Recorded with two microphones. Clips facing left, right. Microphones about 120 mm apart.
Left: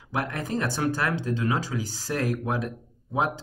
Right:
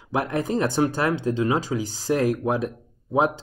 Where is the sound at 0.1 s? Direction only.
25° right (ahead or behind).